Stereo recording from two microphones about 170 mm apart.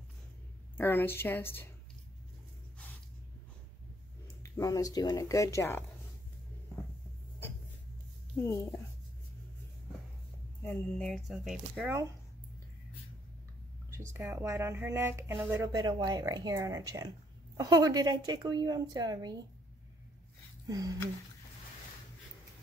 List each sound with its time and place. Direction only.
0.7 s a woman's voice: 10° left (ahead or behind)
4.4 s speech: 20° left (ahead or behind)
10.6 s a woman's voice: 15° left (ahead or behind)
11.1 s speech: centre (ahead or behind)
13.9 s a woman's voice: 15° right (ahead or behind)
20.6 s speech: 20° right (ahead or behind)